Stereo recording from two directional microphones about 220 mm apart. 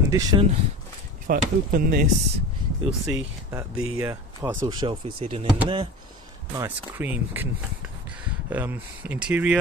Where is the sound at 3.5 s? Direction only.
15° right (ahead or behind).